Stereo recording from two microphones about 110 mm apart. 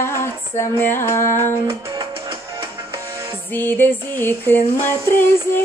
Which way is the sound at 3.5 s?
20° left (ahead or behind).